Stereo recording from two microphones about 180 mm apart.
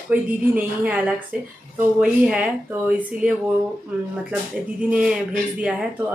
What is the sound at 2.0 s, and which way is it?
Speech, 5° right (ahead or behind).